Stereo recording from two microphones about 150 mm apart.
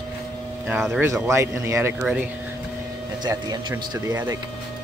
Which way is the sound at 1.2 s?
20° right (ahead or behind).